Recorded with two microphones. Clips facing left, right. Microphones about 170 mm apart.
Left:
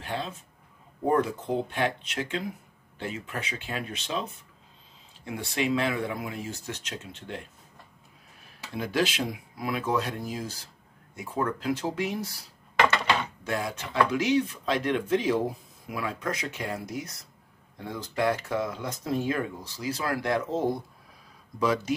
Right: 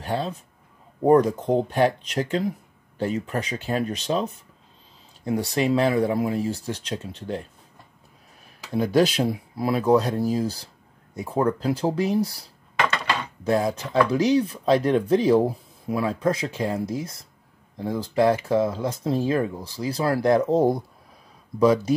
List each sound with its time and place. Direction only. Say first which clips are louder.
0.0 s speech: right 6 dB; 40° right (ahead or behind)
8.7 s speech: right 8 dB; 40° right (ahead or behind)